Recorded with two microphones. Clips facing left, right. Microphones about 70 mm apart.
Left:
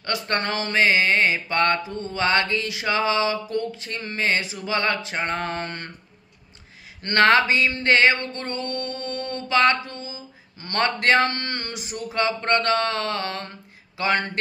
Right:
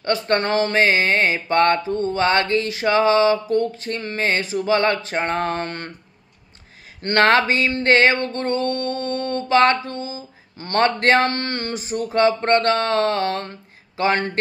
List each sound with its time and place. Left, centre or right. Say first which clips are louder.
0.0 s speech: right 6 dB; right
7.0 s speech: right 1 dB; right